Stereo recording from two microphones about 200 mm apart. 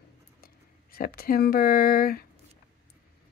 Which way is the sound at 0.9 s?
50° left (ahead or behind).